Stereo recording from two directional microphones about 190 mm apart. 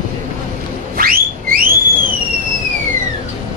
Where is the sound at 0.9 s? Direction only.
50° right (ahead or behind).